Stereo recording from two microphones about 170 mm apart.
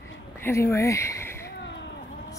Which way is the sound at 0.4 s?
15° left (ahead or behind).